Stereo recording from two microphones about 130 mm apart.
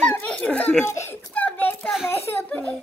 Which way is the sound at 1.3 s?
15° left (ahead or behind).